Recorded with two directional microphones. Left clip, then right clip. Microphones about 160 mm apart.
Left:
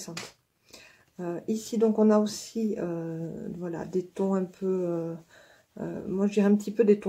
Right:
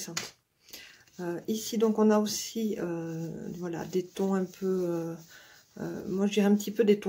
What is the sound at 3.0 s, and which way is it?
Speech, 20° right (ahead or behind).